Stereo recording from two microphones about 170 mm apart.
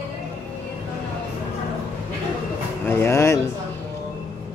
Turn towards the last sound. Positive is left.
turn(degrees=15)  # may be behind; listen again after turning